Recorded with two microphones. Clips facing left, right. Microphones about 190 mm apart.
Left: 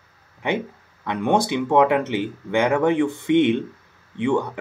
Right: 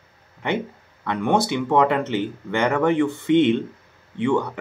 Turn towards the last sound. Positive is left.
turn(degrees=15)  # may be behind; listen again after turning